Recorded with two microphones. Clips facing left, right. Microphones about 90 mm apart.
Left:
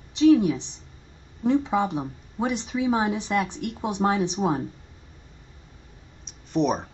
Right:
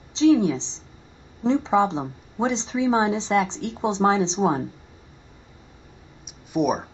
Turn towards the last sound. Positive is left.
turn(degrees=-10)  # may be behind; listen again after turning